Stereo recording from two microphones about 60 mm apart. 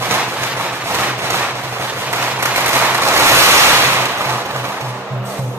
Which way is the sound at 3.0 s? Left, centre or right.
Right.